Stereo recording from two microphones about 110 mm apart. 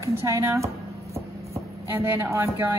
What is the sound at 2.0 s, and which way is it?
Speech, 25° right (ahead or behind).